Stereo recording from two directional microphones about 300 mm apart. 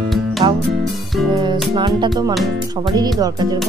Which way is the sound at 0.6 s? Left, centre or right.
Centre.